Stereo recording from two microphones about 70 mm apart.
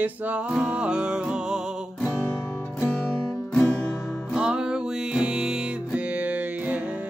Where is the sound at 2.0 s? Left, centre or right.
Centre.